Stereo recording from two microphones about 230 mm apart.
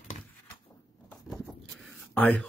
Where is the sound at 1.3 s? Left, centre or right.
Centre.